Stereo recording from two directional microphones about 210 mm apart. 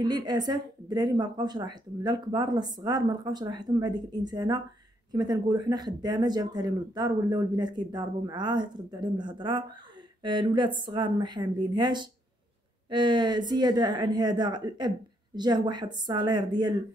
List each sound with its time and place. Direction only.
0.0 s speech: 20° right (ahead or behind)